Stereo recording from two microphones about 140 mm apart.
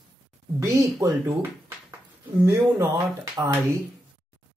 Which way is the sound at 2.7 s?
25° right (ahead or behind).